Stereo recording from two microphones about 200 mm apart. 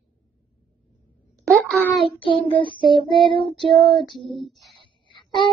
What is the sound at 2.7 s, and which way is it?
Child singing, 25° right (ahead or behind).